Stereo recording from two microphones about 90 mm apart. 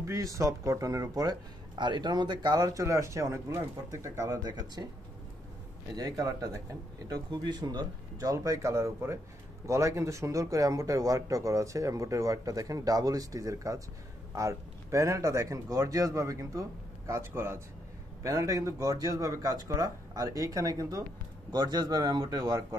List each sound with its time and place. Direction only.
0.0 s speech: 35° right (ahead or behind)
4.4 s a man's voice: 50° right (ahead or behind)
5.9 s speech: 45° right (ahead or behind)
7.2 s speech: 55° right (ahead or behind); by 17.6 s 30° right (ahead or behind)
18.2 s speech: 40° right (ahead or behind)
21.5 s a man's voice: 50° right (ahead or behind)